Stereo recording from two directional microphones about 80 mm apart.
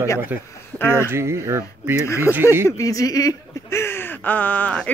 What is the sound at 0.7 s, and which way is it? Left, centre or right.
Speech, left.